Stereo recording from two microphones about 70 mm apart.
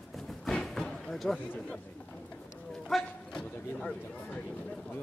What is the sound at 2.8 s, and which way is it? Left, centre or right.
Speech, centre.